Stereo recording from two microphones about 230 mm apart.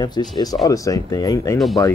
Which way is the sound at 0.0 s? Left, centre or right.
Centre.